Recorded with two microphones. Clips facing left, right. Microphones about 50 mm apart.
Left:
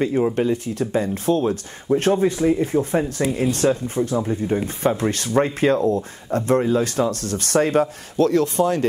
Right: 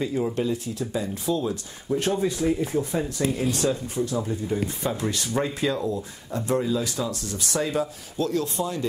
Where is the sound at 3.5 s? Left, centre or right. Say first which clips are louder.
Left 5 dB; left.